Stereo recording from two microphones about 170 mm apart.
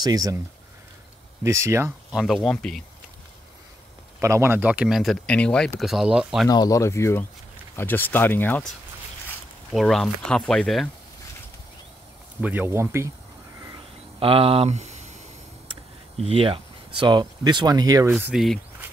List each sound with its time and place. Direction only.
0.0 s speech: 20° right (ahead or behind)
1.4 s speech: 15° right (ahead or behind)
2.1 s speech: centre (ahead or behind)
4.2 s speech: 15° right (ahead or behind)
6.5 s speech: 20° left (ahead or behind)
9.7 s speech: centre (ahead or behind)
12.4 s speech: 10° right (ahead or behind)
14.2 s speech: 35° right (ahead or behind)
18.2 s speech: centre (ahead or behind)